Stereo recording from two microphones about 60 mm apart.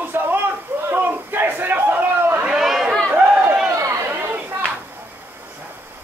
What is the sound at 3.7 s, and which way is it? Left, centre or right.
Chatter, right.